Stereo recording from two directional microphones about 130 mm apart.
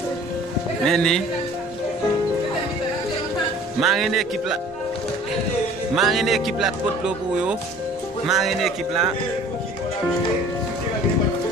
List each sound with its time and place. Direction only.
0.8 s speech: 5° left (ahead or behind)
3.8 s speech: centre (ahead or behind)
5.9 s speech: centre (ahead or behind)